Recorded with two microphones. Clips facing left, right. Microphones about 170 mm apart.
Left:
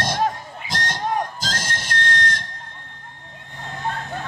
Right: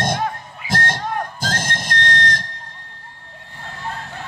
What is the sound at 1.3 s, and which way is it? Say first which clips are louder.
Music: right 4 dB; 55° right (ahead or behind).